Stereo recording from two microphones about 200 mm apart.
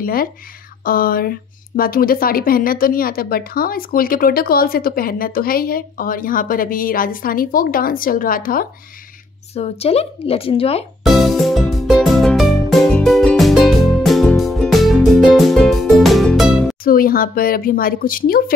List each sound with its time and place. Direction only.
0.0 s speech: 45° left (ahead or behind)
9.5 s speech: 30° left (ahead or behind)
11.1 s music: centre (ahead or behind)
16.8 s speech: 45° left (ahead or behind)